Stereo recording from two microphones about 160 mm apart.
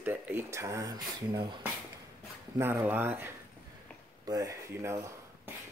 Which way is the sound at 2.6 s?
10° right (ahead or behind).